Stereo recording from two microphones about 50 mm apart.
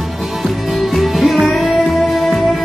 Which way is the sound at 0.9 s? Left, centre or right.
Centre.